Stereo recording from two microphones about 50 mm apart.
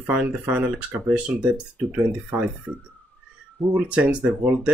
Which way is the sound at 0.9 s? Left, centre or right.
Right.